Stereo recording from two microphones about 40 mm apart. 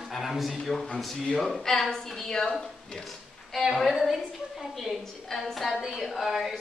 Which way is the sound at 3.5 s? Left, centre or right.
Centre.